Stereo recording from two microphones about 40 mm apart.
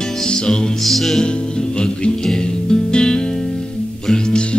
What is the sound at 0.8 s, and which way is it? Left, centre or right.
Music, centre.